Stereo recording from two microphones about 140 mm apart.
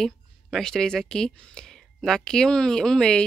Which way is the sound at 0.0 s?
5° left (ahead or behind).